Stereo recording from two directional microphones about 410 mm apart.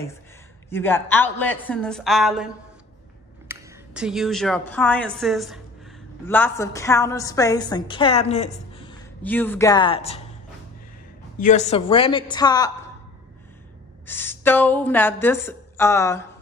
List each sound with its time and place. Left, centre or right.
0.7 s a woman's voice: centre
11.3 s a woman's voice: centre
14.0 s a woman's voice: centre